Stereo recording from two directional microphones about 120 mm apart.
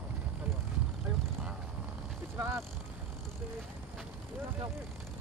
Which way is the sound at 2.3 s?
20° right (ahead or behind).